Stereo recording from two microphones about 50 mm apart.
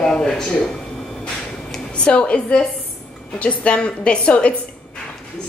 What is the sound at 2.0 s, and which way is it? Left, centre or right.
A woman's voice, left.